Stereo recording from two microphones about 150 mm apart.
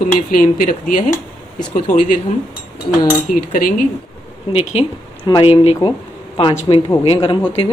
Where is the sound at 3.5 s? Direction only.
65° left (ahead or behind).